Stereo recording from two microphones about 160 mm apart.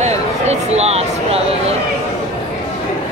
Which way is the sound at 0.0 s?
45° right (ahead or behind).